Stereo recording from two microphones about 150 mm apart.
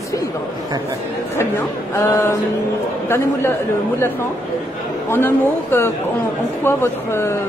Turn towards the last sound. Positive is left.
turn(degrees=15)  # may be behind; listen again after turning